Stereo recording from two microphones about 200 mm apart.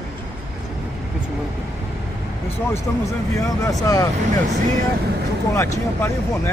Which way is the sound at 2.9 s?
15° left (ahead or behind).